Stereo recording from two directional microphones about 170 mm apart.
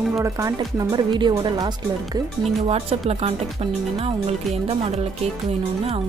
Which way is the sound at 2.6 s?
35° right (ahead or behind).